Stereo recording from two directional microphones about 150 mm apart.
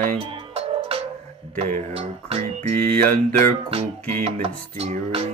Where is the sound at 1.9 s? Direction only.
40° right (ahead or behind).